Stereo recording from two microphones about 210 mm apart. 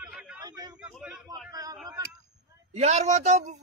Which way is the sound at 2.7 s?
30° right (ahead or behind).